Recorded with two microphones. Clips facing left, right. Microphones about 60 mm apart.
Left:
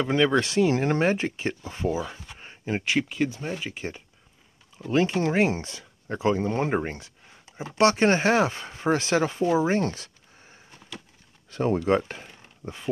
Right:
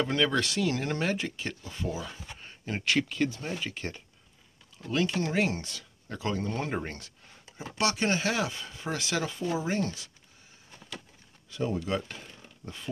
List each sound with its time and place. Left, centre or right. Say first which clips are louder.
0.0 s speech: left 5 dB; centre
4.9 s speech: left 5 dB; left
6.9 s a sound: left 5 dB; centre
7.7 s speech: left 8 dB; left
11.5 s speech: left 8 dB; left
12.1 s a sound: left 4 dB; left